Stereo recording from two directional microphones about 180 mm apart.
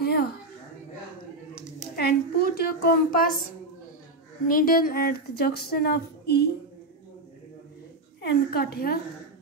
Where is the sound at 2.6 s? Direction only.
55° left (ahead or behind).